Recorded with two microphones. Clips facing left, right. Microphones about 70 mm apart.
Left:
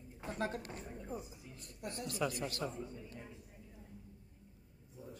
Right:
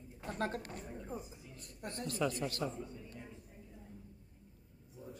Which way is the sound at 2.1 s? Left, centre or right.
Centre.